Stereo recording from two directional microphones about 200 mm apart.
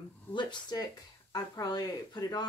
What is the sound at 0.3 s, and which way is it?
A woman's voice, 20° left (ahead or behind).